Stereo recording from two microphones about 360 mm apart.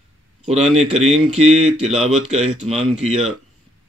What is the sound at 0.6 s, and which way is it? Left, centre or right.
Speech, centre.